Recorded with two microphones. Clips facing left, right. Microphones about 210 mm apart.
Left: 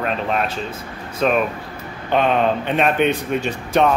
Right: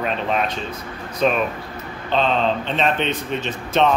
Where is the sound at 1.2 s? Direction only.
Centre (ahead or behind).